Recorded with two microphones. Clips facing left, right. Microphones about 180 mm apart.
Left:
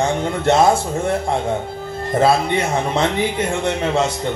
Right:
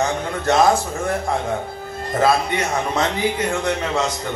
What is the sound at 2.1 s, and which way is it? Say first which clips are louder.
A man's voice: left 2 dB; 30° left (ahead or behind).